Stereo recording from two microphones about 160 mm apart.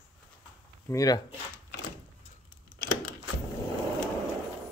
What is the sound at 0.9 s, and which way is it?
Speech, 20° left (ahead or behind).